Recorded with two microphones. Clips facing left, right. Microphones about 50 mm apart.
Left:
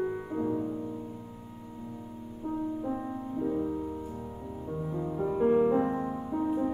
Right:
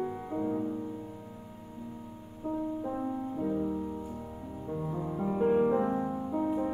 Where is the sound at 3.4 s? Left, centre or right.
Centre.